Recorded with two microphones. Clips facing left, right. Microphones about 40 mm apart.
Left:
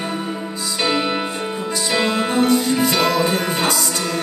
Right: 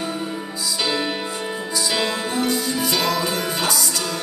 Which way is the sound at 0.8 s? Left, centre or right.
Left.